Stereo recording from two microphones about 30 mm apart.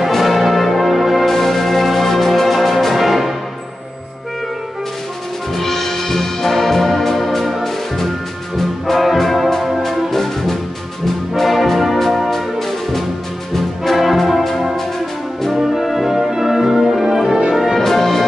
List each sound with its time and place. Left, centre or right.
0.2 s music: centre
1.2 s music: centre
5.6 s music: centre
8.5 s brass instrument: centre
10.1 s music: centre
11.4 s brass instrument: centre
12.3 s brass instrument: centre
15.5 s brass instrument: centre
16.1 s music: centre
17.5 s brass instrument: centre
17.7 s music: centre